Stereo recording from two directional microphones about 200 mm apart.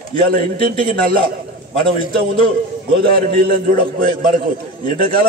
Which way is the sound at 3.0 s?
45° right (ahead or behind).